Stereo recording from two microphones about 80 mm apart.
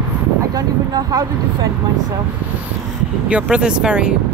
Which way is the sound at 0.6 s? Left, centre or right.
Right.